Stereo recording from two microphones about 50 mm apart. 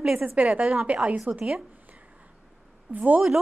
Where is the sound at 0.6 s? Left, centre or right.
Centre.